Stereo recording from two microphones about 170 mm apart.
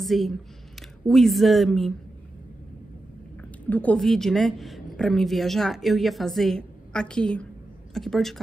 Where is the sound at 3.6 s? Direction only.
10° left (ahead or behind).